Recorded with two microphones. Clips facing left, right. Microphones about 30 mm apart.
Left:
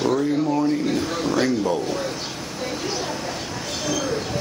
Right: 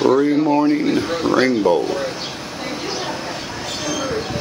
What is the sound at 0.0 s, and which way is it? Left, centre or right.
Speech, right.